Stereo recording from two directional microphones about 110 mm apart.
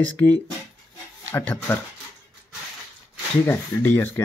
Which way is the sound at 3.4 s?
20° left (ahead or behind).